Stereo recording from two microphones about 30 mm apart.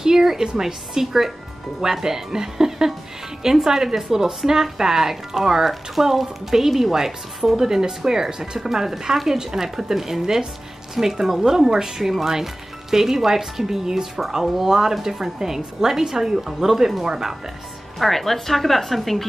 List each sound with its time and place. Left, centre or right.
0.0 s music: centre
0.6 s speech: centre
14.4 s speech: centre
17.9 s speech: centre